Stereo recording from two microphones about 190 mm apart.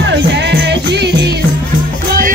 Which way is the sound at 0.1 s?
65° right (ahead or behind).